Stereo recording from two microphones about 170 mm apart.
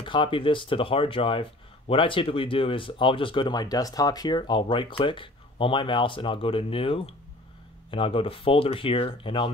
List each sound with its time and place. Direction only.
0.0 s speech: 30° left (ahead or behind)